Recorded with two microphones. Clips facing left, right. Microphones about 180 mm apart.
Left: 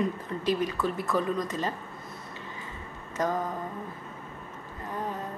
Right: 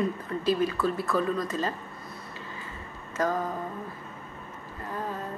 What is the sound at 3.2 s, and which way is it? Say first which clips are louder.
Speech: right 1 dB; 20° left (ahead or behind).